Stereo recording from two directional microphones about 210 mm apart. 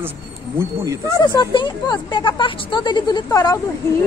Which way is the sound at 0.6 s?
15° right (ahead or behind).